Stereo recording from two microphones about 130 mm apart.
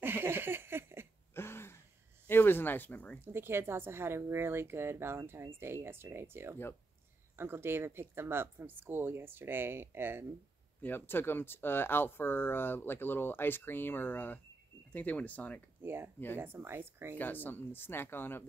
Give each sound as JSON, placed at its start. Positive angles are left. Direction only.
{"t": 0.0, "sound": "a sound", "side_deg": -15}
{"t": 1.3, "sound": "a sound", "side_deg": 20}
{"t": 2.2, "sound": "speech", "side_deg": 15}
{"t": 3.2, "sound": "speech", "side_deg": -20}
{"t": 10.8, "sound": "speech", "side_deg": 15}
{"t": 15.8, "sound": "speech", "side_deg": -15}
{"t": 17.2, "sound": "speech", "side_deg": 15}